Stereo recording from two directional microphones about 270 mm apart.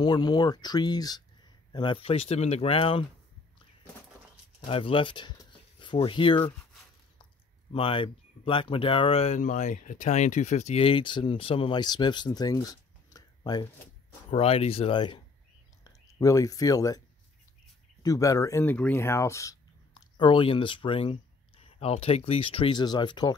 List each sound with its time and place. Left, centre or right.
0.0 s speech: centre
4.6 s speech: centre
7.7 s speech: centre
18.0 s speech: centre